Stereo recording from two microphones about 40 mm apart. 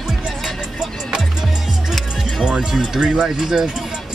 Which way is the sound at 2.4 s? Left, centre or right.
Centre.